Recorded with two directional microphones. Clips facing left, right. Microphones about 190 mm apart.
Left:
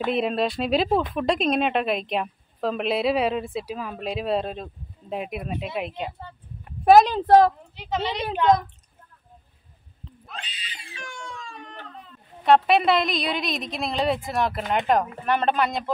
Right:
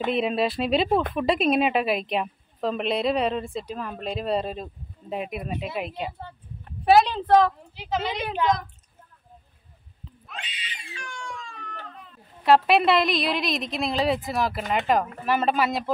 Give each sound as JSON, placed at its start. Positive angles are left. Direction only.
{"t": 0.0, "sound": "a woman's voice", "side_deg": 0}
{"t": 6.8, "sound": "speech", "side_deg": 45}
{"t": 7.7, "sound": "a woman's voice", "side_deg": 0}
{"t": 10.2, "sound": "a sound", "side_deg": 35}
{"t": 12.4, "sound": "a woman's voice", "side_deg": 0}